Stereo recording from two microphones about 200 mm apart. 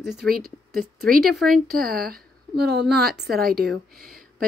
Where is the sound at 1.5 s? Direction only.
45° right (ahead or behind).